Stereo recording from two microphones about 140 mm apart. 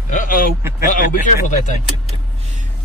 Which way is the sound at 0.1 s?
70° left (ahead or behind).